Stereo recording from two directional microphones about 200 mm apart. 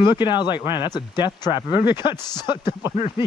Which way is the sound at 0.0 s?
25° left (ahead or behind).